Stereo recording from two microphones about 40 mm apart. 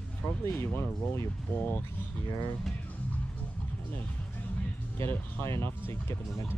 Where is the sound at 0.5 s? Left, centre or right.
Left.